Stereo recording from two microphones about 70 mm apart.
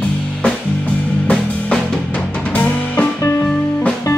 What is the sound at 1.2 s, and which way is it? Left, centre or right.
Drum kit, centre.